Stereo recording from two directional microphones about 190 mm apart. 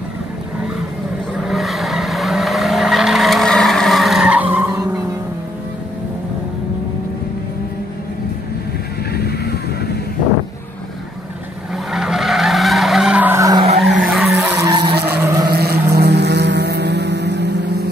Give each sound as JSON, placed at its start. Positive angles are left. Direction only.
{"t": 1.4, "sound": "vehicle", "side_deg": 0}
{"t": 9.1, "sound": "vehicle", "side_deg": 55}
{"t": 11.7, "sound": "vehicle", "side_deg": 0}
{"t": 14.1, "sound": "skidding", "side_deg": -5}
{"t": 14.6, "sound": "skidding", "side_deg": -20}
{"t": 15.0, "sound": "vehicle", "side_deg": -15}
{"t": 15.5, "sound": "vehicle", "side_deg": -55}